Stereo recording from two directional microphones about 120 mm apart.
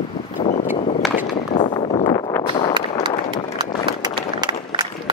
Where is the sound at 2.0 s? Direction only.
40° left (ahead or behind).